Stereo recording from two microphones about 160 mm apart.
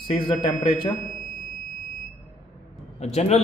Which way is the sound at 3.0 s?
40° left (ahead or behind).